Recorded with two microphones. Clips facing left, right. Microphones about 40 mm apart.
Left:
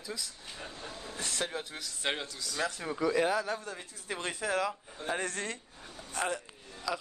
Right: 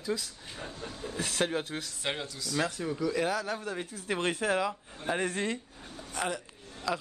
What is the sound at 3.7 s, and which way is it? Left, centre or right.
Speech, right.